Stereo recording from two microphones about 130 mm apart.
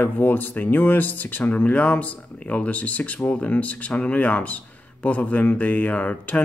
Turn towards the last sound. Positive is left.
turn(degrees=10)  # may be behind; listen again after turning